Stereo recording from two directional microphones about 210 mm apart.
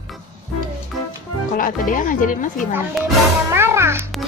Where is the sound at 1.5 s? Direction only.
40° left (ahead or behind).